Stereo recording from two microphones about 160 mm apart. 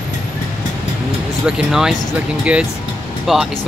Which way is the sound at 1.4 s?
5° right (ahead or behind).